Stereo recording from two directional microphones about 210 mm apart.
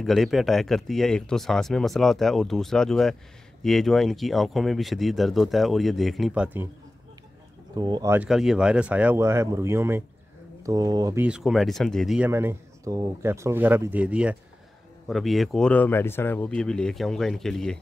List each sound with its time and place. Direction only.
0.0 s speech: centre (ahead or behind)
7.7 s speech: 20° right (ahead or behind)
11.2 s speech: 5° right (ahead or behind)